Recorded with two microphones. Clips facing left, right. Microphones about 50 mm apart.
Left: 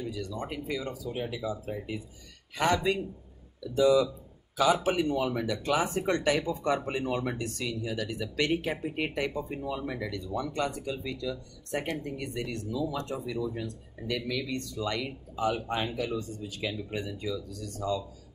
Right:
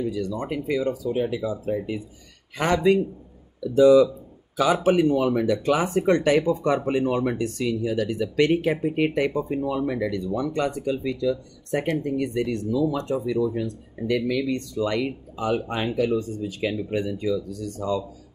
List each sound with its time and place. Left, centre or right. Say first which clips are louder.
0.3 s speech: right 8 dB; right
2.5 s speech: right 7 dB; right
4.6 s speech: right 6 dB; right
16.1 s speech: right 9 dB; right
17.2 s speech: right 9 dB; right